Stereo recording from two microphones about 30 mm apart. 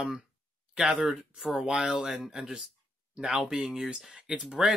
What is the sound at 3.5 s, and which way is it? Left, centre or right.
Speech, right.